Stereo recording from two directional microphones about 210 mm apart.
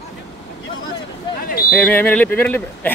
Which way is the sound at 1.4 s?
45° left (ahead or behind).